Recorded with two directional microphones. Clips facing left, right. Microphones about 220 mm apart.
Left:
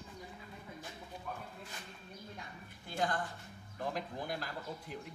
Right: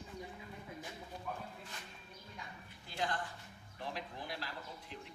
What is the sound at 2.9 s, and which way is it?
Speech, 50° left (ahead or behind).